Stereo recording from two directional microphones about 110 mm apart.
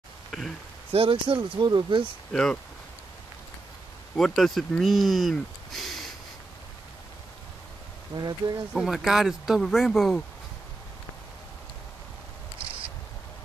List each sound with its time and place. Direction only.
0.3 s speech: centre (ahead or behind)
0.9 s speech: 55° right (ahead or behind)
2.3 s speech: 5° left (ahead or behind)
4.2 s speech: 5° left (ahead or behind)
8.2 s speech: 40° right (ahead or behind)
8.7 s speech: 5° right (ahead or behind)
12.6 s a sound: 55° right (ahead or behind)